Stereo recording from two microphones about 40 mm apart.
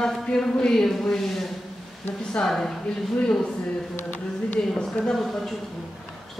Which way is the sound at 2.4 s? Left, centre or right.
Centre.